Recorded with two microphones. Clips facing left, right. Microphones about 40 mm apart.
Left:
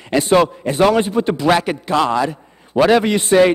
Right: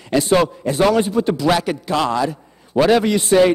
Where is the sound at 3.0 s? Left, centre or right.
Left.